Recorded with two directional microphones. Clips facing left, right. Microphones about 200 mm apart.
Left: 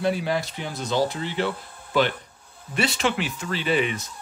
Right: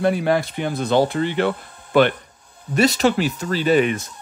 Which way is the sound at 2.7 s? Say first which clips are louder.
Right 7 dB; 40° right (ahead or behind).